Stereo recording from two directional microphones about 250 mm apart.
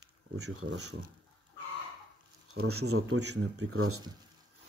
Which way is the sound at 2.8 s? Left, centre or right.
Right.